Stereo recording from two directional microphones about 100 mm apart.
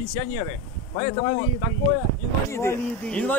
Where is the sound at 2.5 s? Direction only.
25° left (ahead or behind).